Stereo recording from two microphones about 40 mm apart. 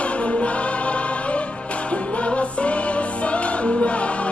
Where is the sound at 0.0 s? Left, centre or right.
Left.